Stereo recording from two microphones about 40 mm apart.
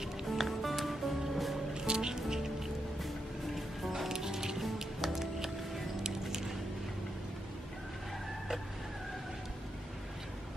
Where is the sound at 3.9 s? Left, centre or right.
Centre.